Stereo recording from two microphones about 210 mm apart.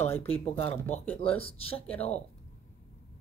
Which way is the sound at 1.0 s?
5° left (ahead or behind).